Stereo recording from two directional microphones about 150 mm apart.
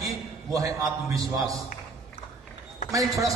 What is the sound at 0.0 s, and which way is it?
A man's voice, 20° right (ahead or behind).